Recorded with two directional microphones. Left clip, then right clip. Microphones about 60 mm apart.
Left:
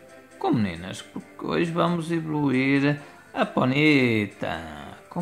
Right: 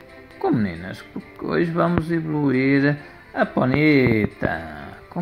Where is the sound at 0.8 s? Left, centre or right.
Right.